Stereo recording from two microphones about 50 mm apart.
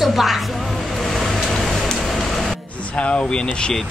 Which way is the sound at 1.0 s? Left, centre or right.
Centre.